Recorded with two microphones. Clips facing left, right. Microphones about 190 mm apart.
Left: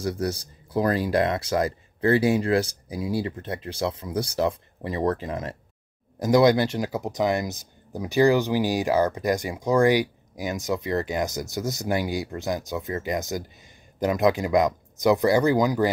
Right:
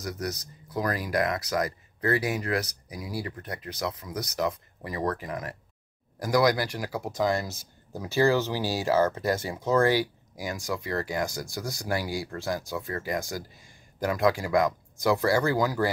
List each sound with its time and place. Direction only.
0.0 s speech: 30° left (ahead or behind)